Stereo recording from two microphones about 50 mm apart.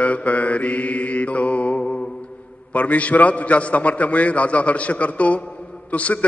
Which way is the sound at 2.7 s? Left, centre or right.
Left.